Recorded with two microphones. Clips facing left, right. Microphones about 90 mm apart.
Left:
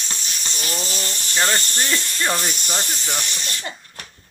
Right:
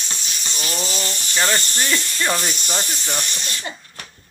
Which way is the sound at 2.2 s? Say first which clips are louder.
Even; 5° left (ahead or behind).